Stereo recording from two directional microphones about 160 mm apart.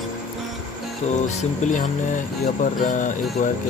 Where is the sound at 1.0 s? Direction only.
45° left (ahead or behind).